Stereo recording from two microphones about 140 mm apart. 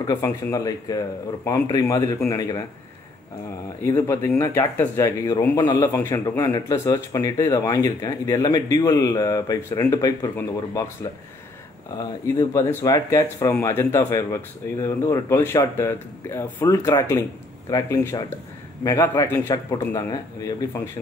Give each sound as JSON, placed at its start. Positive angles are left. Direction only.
{"t": 0.0, "sound": "speech", "side_deg": 25}
{"t": 3.8, "sound": "speech", "side_deg": 20}
{"t": 12.0, "sound": "speech", "side_deg": 25}